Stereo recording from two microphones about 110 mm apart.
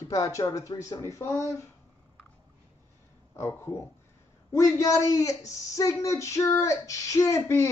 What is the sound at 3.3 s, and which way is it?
A woman's voice, 25° left (ahead or behind).